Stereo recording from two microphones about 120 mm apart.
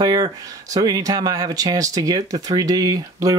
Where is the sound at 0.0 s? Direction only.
30° right (ahead or behind).